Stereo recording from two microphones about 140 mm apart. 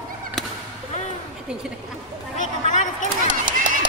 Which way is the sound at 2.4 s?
60° left (ahead or behind).